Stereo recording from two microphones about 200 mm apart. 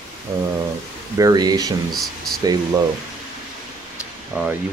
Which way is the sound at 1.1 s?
20° right (ahead or behind).